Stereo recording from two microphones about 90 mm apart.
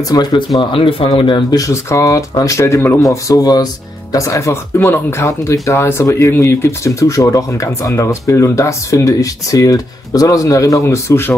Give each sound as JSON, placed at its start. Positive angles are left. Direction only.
{"t": 0.1, "sound": "speech", "side_deg": 50}
{"t": 0.6, "sound": "speech", "side_deg": 70}
{"t": 1.5, "sound": "speech", "side_deg": 35}